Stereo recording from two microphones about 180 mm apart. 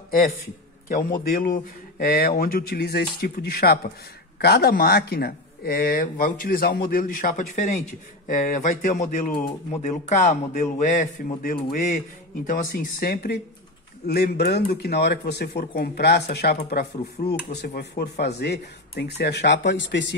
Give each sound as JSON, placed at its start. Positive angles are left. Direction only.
{"t": 1.3, "sound": "speech", "side_deg": 50}
{"t": 12.4, "sound": "speech", "side_deg": 60}